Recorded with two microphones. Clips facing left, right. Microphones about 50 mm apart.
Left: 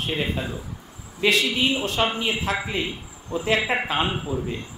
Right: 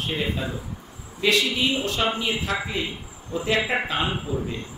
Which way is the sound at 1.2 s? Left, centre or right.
Left.